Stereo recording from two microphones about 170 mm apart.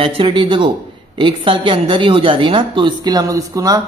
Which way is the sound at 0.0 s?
30° right (ahead or behind).